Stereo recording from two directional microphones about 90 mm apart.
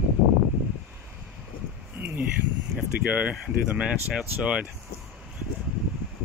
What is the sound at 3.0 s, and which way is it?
Speech, 15° right (ahead or behind).